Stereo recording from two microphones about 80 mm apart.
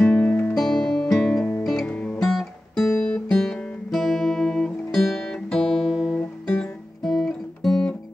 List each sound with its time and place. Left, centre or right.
0.0 s music: left
0.6 s music: centre
1.9 s guitar: centre
2.1 s guitar: centre